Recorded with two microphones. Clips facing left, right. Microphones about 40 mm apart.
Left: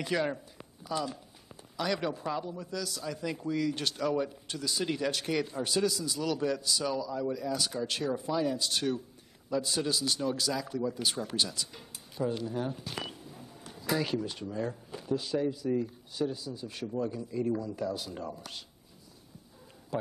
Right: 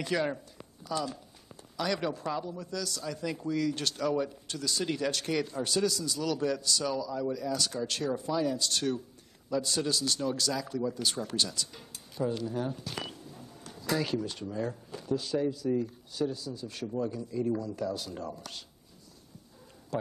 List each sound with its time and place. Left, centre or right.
0.0 s speech: centre
0.6 s a sound: centre
1.8 s a man's voice: centre
19.9 s a man's voice: centre